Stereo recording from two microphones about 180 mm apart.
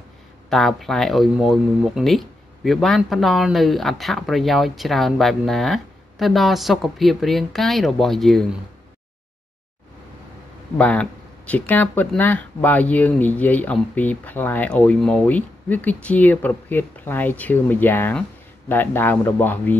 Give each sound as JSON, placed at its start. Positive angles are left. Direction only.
{"t": 0.5, "sound": "speech", "side_deg": 0}
{"t": 10.8, "sound": "speech", "side_deg": 5}